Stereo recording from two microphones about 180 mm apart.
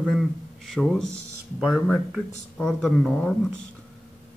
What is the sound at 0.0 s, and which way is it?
A man's voice, centre (ahead or behind).